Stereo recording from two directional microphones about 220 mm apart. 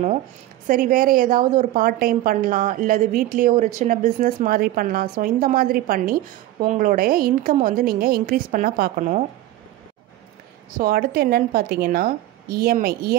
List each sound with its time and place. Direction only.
0.7 s a woman's voice: 40° right (ahead or behind)
10.8 s a woman's voice: 45° right (ahead or behind)